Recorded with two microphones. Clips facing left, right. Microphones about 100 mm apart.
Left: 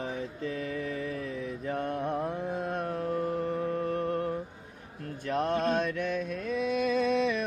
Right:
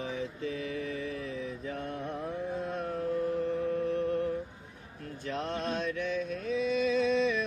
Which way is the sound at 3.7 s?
55° left (ahead or behind).